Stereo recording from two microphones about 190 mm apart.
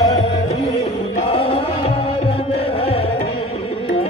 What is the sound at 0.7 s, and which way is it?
Music, 30° left (ahead or behind).